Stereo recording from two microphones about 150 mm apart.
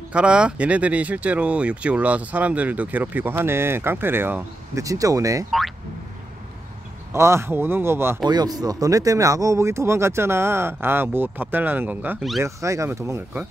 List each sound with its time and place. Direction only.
0.1 s speech: 5° right (ahead or behind); by 5.5 s 20° right (ahead or behind)
7.1 s speech: 20° right (ahead or behind)
8.3 s speech: 25° right (ahead or behind)